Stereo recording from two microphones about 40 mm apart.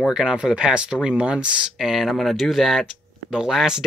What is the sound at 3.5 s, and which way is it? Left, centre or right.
Speech, centre.